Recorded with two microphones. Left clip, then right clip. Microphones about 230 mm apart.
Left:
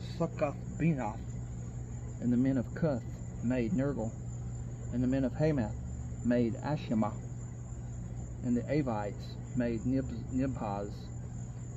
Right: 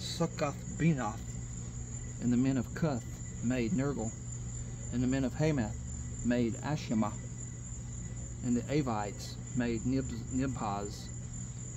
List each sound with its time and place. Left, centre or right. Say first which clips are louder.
0.0 s speech: left 1 dB; right
2.2 s speech: left 1 dB; centre
8.5 s speech: left 1 dB; centre